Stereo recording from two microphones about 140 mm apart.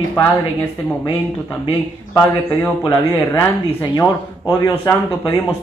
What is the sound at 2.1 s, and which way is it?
Speech, 25° left (ahead or behind).